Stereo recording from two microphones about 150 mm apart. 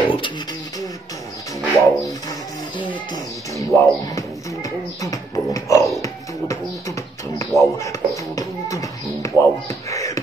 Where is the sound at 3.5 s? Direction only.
20° left (ahead or behind).